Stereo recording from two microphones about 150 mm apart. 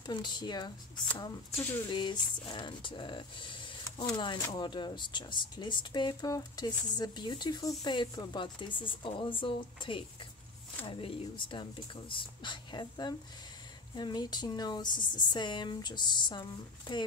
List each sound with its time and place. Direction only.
0.0 s a woman's voice: 30° left (ahead or behind)